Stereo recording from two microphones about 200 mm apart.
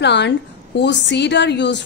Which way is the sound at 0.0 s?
60° left (ahead or behind).